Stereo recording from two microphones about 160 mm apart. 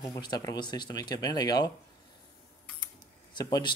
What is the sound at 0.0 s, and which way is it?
Speech, 25° left (ahead or behind).